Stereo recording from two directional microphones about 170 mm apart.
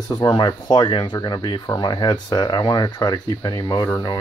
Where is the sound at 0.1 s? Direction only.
25° left (ahead or behind).